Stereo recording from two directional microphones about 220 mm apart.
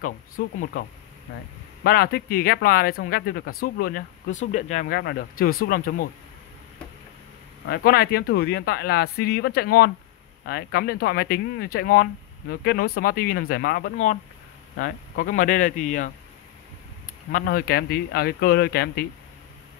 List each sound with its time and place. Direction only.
0.4 s speech: 40° left (ahead or behind)
7.6 s speech: 45° left (ahead or behind)
17.3 s speech: 40° left (ahead or behind)